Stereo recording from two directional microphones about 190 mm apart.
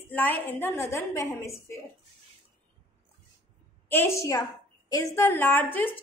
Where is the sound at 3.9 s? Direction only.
10° left (ahead or behind).